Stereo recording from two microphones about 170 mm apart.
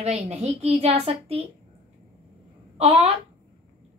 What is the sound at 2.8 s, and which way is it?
Speech, 35° right (ahead or behind).